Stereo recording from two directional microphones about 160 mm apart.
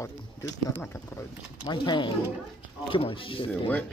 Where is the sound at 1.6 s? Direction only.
30° left (ahead or behind).